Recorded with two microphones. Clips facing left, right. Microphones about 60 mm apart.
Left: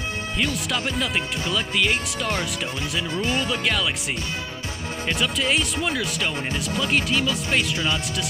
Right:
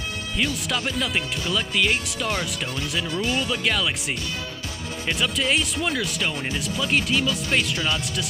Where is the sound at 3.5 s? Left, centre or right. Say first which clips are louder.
Even; centre.